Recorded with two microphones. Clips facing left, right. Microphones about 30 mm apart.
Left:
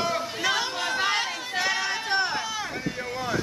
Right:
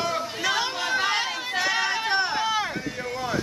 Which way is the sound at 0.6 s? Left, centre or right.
Centre.